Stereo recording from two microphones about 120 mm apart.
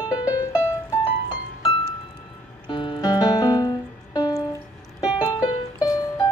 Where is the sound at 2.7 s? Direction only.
40° left (ahead or behind).